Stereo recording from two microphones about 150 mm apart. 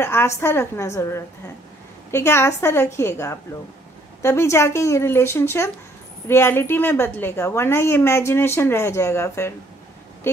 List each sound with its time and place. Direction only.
0.0 s a woman's voice: 15° left (ahead or behind)